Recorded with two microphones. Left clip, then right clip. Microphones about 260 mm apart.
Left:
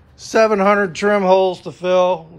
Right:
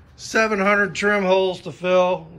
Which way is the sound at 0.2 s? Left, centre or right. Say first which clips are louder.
Left 5 dB; centre.